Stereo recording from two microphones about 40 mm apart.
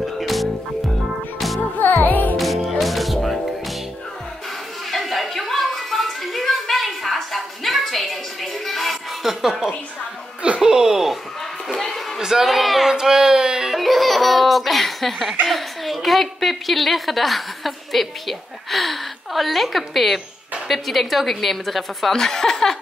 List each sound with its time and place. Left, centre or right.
0.0 s music: centre
2.0 s music: left
2.3 s music: centre
4.9 s a sound: centre
11.7 s a sound: centre
12.2 s a sound: centre
13.0 s music: centre
13.7 s giggle: centre
15.4 s a woman's voice: centre
22.1 s a woman's voice: centre